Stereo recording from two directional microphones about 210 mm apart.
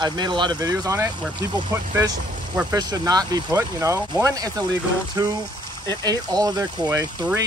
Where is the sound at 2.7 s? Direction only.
20° right (ahead or behind).